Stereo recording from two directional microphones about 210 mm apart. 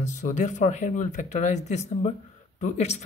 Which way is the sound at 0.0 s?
35° left (ahead or behind).